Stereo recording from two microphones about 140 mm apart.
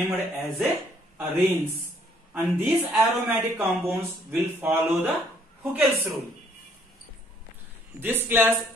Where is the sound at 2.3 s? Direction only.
15° right (ahead or behind).